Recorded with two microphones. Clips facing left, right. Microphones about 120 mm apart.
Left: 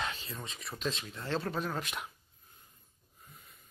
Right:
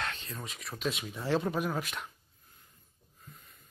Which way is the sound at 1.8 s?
5° left (ahead or behind).